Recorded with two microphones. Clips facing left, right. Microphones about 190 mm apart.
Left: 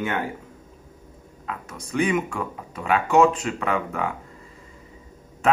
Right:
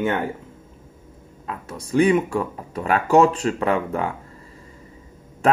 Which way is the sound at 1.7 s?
35° right (ahead or behind).